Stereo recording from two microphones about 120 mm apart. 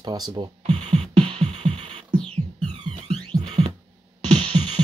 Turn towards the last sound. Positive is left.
turn(degrees=-50)  # may be behind; listen again after turning